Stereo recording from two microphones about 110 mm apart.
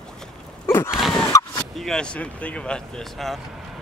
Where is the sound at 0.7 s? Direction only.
25° left (ahead or behind).